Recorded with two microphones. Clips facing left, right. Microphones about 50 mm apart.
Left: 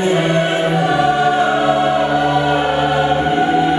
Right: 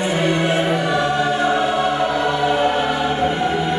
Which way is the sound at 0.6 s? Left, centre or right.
Centre.